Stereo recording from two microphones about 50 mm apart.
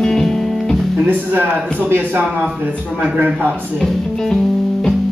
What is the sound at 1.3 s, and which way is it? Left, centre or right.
A man's voice, right.